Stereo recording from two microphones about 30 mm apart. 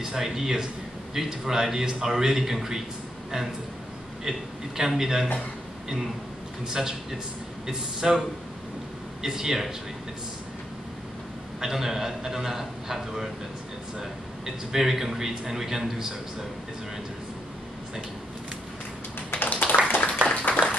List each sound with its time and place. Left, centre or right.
0.0 s a man's voice: centre
4.2 s a man's voice: centre
6.6 s a man's voice: right
11.6 s a man's voice: centre
14.4 s a man's voice: centre
19.3 s a sound: left